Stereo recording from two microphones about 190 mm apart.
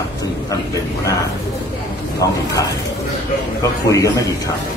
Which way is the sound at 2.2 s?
20° left (ahead or behind).